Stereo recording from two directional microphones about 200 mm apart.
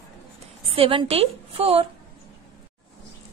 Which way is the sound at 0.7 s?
25° right (ahead or behind).